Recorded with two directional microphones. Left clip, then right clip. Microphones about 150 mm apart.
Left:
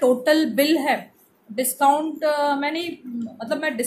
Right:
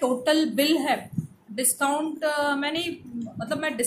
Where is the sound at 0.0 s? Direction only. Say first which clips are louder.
Left 5 dB; 15° left (ahead or behind).